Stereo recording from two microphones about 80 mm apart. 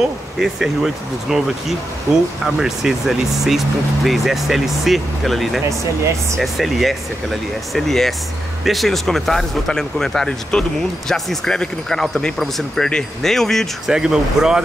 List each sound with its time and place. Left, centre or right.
0.4 s speech: centre
13.9 s speech: centre